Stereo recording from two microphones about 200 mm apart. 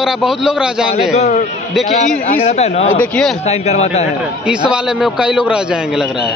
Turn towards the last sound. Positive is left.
turn(degrees=-5)  # may be behind; listen again after turning